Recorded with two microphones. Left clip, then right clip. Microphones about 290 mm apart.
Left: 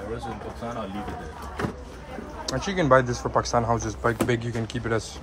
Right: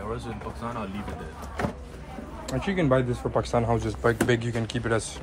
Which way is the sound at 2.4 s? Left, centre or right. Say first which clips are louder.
Left 3 dB; centre.